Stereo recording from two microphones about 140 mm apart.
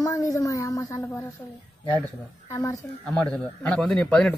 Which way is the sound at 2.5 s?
20° left (ahead or behind).